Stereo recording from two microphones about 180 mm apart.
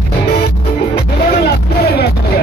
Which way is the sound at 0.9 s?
60° left (ahead or behind).